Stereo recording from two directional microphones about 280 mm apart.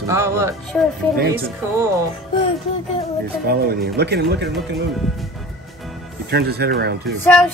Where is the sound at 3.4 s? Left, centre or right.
Right.